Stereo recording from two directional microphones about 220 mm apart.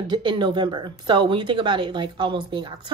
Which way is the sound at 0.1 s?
20° right (ahead or behind).